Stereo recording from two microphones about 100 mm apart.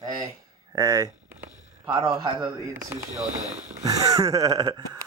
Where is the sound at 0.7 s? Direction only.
35° right (ahead or behind).